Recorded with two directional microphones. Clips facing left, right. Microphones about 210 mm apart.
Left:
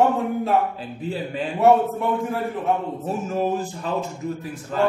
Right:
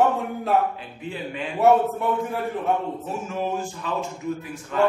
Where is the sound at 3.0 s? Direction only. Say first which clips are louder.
Left 4 dB; 35° left (ahead or behind).